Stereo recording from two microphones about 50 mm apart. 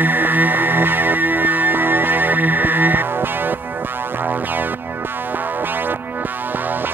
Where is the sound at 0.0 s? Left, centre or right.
Right.